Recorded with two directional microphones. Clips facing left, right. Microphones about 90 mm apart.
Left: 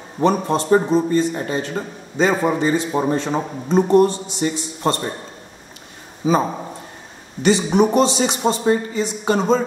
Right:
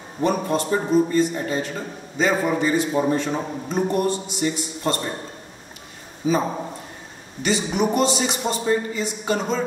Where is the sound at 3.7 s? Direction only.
30° left (ahead or behind).